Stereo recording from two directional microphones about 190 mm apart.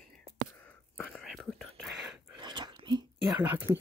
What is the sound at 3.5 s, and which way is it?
Speech, 10° right (ahead or behind).